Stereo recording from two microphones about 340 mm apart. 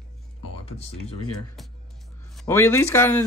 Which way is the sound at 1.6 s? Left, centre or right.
Centre.